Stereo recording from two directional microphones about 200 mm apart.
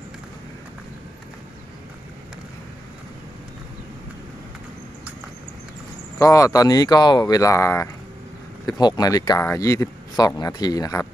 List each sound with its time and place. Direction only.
6.1 s speech: 15° left (ahead or behind)